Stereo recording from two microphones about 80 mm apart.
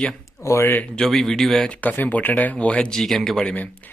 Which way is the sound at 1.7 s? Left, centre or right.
Centre.